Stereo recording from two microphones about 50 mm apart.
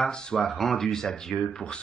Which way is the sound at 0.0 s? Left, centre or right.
Centre.